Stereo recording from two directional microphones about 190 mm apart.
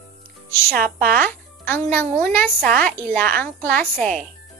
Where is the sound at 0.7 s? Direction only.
50° right (ahead or behind).